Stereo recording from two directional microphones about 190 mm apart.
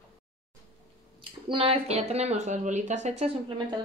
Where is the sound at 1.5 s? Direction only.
30° right (ahead or behind).